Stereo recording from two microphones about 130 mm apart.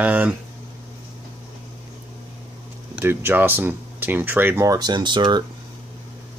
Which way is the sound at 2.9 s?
15° right (ahead or behind).